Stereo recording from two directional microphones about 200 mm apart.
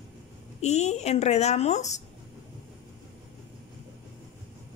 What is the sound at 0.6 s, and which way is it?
A woman's voice, 35° left (ahead or behind).